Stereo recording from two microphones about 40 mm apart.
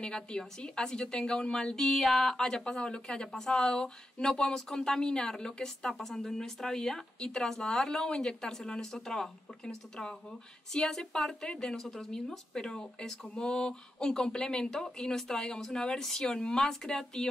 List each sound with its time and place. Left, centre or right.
0.0 s a woman's voice: left
11.8 s a woman's voice: centre